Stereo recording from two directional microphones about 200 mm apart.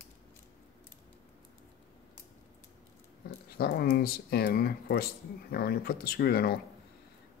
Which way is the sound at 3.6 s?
50° left (ahead or behind).